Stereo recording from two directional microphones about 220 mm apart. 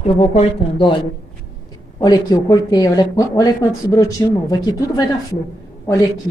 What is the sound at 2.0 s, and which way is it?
Speech, 15° left (ahead or behind).